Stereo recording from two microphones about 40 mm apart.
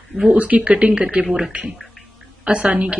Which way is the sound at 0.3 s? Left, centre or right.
Right.